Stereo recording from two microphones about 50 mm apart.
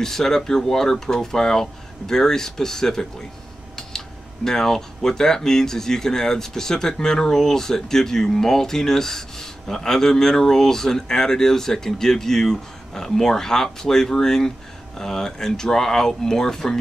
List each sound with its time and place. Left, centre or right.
0.0 s speech: centre
4.5 s speech: centre